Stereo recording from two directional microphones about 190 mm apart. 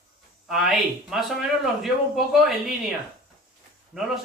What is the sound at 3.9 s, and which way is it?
Speech, centre (ahead or behind).